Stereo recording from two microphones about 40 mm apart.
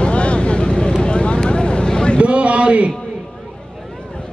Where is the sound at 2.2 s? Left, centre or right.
Right.